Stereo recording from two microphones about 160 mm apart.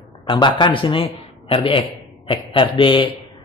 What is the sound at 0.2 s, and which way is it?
A man's voice, 30° left (ahead or behind).